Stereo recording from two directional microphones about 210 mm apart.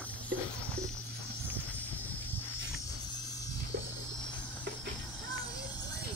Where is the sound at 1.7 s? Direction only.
10° left (ahead or behind).